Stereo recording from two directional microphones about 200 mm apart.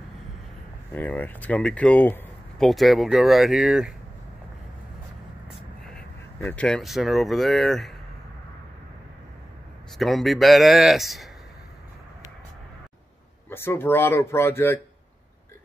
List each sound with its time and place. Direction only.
0.9 s speech: 10° left (ahead or behind)
5.5 s speech: 5° left (ahead or behind)
9.9 s speech: centre (ahead or behind)
13.5 s speech: 10° left (ahead or behind)